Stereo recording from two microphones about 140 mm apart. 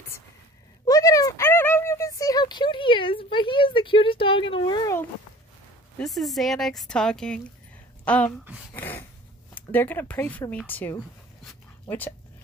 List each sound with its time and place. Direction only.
0.8 s a sound: 25° left (ahead or behind)
5.9 s a woman's voice: centre (ahead or behind)
8.7 s dog: 15° left (ahead or behind)
9.5 s a woman's voice: 15° left (ahead or behind)